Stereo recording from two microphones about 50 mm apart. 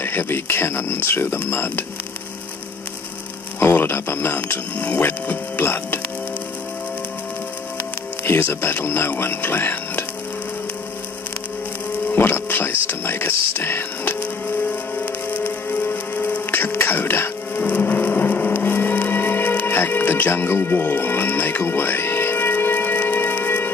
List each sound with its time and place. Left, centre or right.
0.0 s speech: left
3.7 s speech: left
8.3 s speech: left
12.2 s speech: left
15.0 s music: left
16.7 s speech: left
17.6 s a sound: left
20.8 s music: left